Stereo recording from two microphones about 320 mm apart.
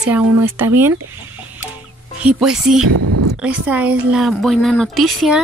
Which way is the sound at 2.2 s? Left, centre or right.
Centre.